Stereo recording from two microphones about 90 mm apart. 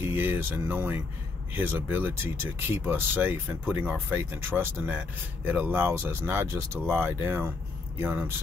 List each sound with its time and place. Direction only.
0.0 s speech: 25° right (ahead or behind)